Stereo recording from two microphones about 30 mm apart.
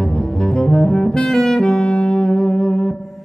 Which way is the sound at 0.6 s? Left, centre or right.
Left.